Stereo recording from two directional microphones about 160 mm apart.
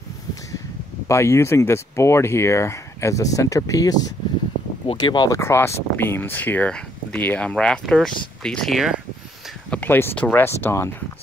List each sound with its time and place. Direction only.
1.0 s speech: 15° left (ahead or behind); by 9.0 s centre (ahead or behind)
9.7 s speech: 10° left (ahead or behind)